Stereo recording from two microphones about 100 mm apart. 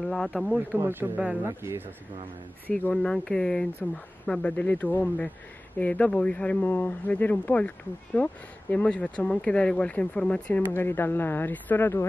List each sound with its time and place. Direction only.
0.0 s speech: 5° left (ahead or behind)
0.7 s speech: 20° right (ahead or behind)
2.6 s speech: 15° left (ahead or behind)